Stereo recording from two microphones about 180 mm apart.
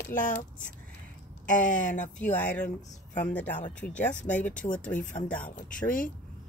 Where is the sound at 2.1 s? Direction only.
10° left (ahead or behind).